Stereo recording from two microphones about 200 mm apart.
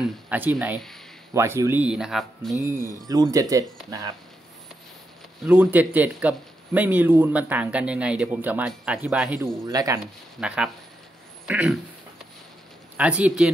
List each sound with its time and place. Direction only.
0.0 s speech: 10° right (ahead or behind)
1.3 s speech: 15° right (ahead or behind)
3.1 s speech: 15° right (ahead or behind)
5.4 s speech: 10° right (ahead or behind)
9.7 s speech: 15° right (ahead or behind)
10.4 s speech: 5° right (ahead or behind)
12.9 s speech: 5° right (ahead or behind)